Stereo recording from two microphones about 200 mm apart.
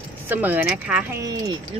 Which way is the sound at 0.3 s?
10° right (ahead or behind).